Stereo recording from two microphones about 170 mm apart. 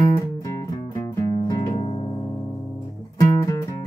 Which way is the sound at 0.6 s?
20° left (ahead or behind).